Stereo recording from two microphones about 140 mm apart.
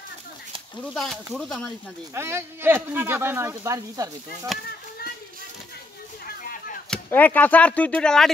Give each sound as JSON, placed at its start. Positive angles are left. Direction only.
{"t": 0.9, "sound": "speech", "side_deg": 0}
{"t": 2.1, "sound": "speech", "side_deg": -20}
{"t": 4.5, "sound": "speech", "side_deg": 0}
{"t": 6.2, "sound": "a sound", "side_deg": 75}
{"t": 7.1, "sound": "speech", "side_deg": 10}